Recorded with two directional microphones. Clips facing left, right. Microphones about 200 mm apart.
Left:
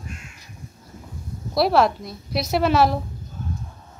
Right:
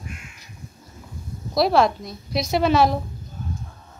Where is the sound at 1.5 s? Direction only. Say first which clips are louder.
Even; 5° left (ahead or behind).